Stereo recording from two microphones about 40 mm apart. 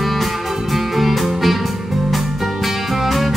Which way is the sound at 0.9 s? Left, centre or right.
Centre.